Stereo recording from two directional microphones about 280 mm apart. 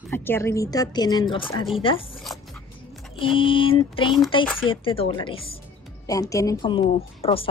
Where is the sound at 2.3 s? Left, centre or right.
Centre.